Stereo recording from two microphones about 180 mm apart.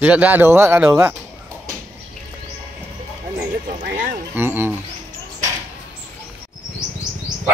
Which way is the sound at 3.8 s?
45° right (ahead or behind).